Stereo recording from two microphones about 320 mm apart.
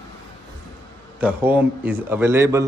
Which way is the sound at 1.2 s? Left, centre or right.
Centre.